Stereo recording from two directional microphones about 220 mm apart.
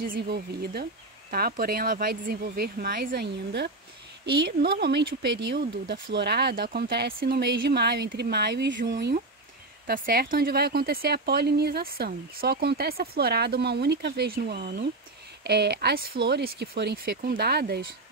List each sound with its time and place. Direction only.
0.0 s speech: 45° right (ahead or behind)